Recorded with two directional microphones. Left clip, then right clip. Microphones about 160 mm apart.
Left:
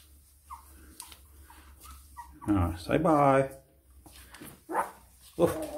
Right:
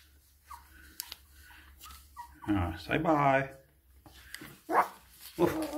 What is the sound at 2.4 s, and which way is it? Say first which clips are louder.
Speech: left 3 dB; 35° left (ahead or behind).